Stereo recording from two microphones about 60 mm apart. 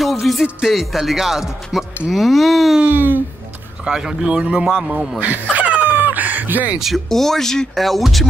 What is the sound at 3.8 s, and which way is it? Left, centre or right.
A man's voice, centre.